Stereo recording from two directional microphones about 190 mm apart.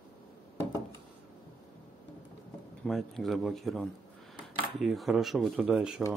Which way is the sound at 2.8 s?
Centre (ahead or behind).